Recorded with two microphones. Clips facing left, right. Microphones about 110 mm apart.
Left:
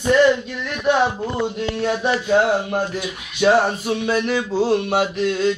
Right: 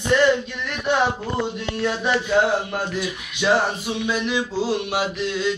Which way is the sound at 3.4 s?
50° left (ahead or behind).